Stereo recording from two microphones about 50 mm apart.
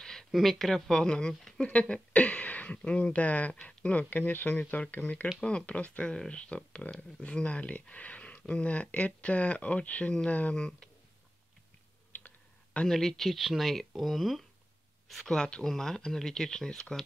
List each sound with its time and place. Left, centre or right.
0.0 s a sound: centre
0.3 s speech: centre; by 5.3 s left
5.4 s speech: centre
12.1 s a sound: left
12.8 s speech: centre
15.2 s speech: centre